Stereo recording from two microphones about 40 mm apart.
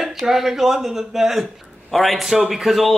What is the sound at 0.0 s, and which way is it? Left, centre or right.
Speech, centre.